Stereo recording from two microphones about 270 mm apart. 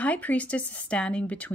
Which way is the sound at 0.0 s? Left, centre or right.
Centre.